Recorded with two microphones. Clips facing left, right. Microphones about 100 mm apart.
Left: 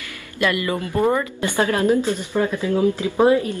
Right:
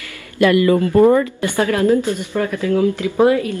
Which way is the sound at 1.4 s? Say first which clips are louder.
Right 3 dB; 20° left (ahead or behind).